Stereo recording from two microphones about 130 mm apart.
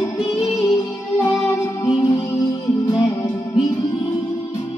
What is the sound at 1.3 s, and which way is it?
Music, 25° left (ahead or behind).